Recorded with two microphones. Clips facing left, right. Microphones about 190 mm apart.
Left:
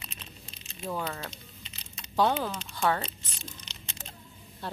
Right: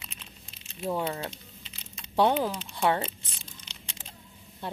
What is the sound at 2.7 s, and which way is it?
Speech, 25° right (ahead or behind).